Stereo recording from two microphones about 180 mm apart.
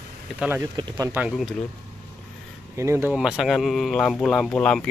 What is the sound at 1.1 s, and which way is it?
Speech, 5° right (ahead or behind).